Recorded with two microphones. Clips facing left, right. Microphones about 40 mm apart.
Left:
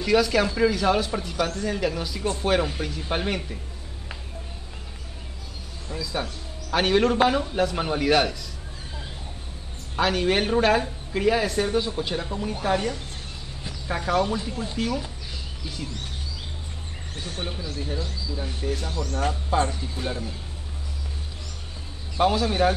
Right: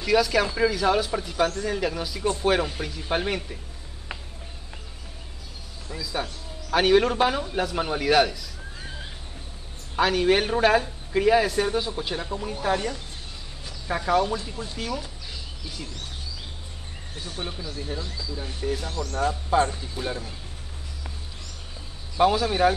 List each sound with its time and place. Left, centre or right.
0.0 s speech: centre
5.9 s speech: centre
9.9 s speech: centre
17.1 s speech: left
18.3 s speech: centre
22.2 s speech: centre